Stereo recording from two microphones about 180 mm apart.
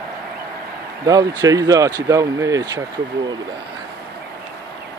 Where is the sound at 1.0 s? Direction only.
20° right (ahead or behind).